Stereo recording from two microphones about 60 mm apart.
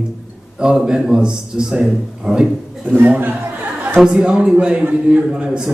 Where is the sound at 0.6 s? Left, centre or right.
Centre.